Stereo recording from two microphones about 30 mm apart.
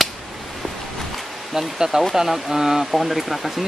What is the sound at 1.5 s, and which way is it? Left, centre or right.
Speech, centre.